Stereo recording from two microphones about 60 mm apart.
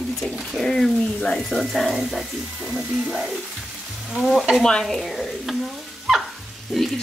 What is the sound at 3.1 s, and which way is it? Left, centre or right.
A woman's voice, centre.